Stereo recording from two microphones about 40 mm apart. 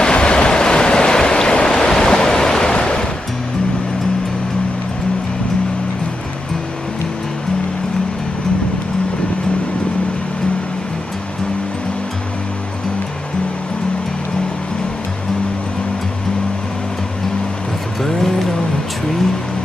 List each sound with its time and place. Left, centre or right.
0.0 s waves: left